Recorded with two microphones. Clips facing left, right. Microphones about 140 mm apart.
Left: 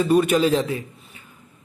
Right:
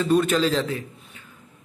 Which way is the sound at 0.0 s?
10° left (ahead or behind).